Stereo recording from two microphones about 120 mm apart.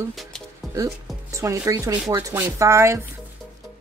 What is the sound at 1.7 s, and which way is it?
Speech, 35° right (ahead or behind).